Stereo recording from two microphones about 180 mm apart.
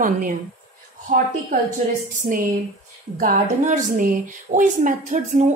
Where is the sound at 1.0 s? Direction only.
50° right (ahead or behind).